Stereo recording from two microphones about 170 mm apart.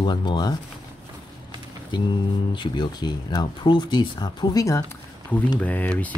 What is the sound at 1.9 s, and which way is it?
Speech, 25° left (ahead or behind).